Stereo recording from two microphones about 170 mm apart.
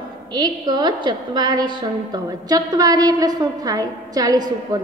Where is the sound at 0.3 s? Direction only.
25° right (ahead or behind).